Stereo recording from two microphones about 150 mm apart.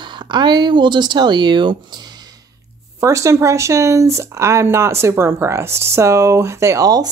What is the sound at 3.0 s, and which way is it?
Speech, 20° right (ahead or behind).